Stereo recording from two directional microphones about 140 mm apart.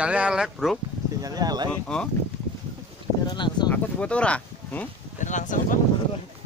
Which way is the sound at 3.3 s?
30° left (ahead or behind).